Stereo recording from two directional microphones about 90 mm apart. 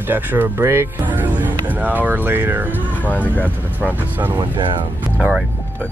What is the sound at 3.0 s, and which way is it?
Speech, 20° left (ahead or behind).